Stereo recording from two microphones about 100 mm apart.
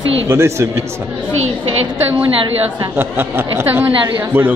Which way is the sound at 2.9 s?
20° right (ahead or behind).